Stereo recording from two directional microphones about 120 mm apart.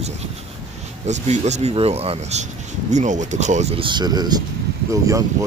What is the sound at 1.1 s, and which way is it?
Speech, 70° right (ahead or behind).